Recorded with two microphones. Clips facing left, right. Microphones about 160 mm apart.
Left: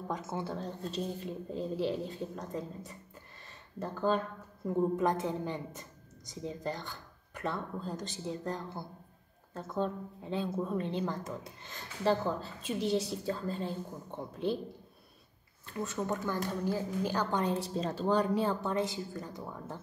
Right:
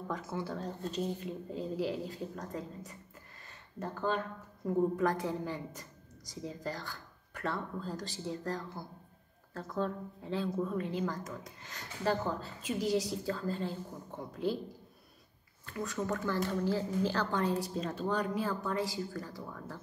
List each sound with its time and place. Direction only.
0.1 s a woman's voice: 25° left (ahead or behind)
4.9 s a woman's voice: 25° left (ahead or behind)
15.6 s a woman's voice: 25° left (ahead or behind)